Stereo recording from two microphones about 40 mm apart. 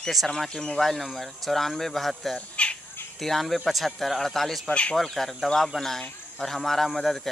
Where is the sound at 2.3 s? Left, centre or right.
Left.